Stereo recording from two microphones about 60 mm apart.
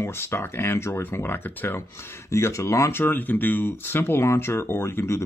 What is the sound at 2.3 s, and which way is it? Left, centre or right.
Speech, left.